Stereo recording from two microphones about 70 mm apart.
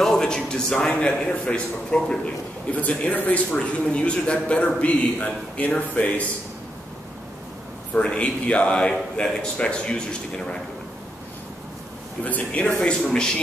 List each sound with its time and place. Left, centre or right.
0.0 s a man's voice: centre
7.9 s a man's voice: centre
12.3 s speech: left
12.8 s a man's voice: centre